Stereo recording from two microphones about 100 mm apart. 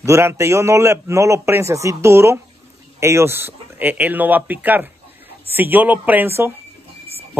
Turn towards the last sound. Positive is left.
turn(degrees=-25)  # may be behind; listen again after turning